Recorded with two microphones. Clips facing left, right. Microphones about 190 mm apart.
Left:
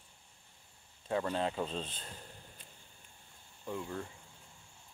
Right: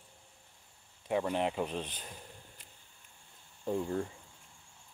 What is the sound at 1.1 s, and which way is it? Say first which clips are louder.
Speech: right 2 dB; 15° right (ahead or behind).